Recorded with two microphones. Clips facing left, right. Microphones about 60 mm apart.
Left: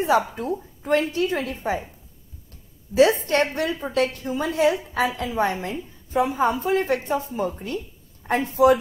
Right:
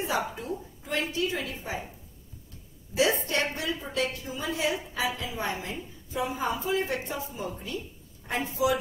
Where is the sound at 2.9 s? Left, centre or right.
Left.